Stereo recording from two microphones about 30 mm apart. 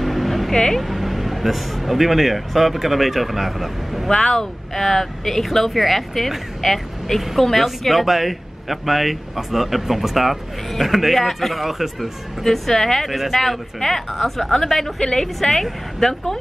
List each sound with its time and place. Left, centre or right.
0.0 s a sound: centre
0.7 s speech: centre
4.1 s speech: centre